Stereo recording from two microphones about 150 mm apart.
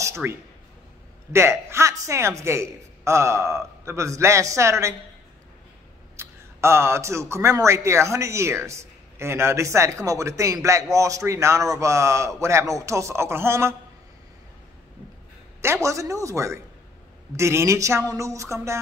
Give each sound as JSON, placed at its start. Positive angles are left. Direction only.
{"t": 0.0, "sound": "a sound", "side_deg": -15}
{"t": 1.3, "sound": "speech", "side_deg": -15}
{"t": 6.1, "sound": "speech", "side_deg": -15}
{"t": 15.6, "sound": "speech", "side_deg": -20}